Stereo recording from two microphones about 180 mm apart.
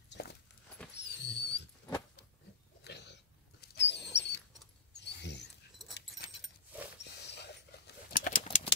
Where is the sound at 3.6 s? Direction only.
70° left (ahead or behind).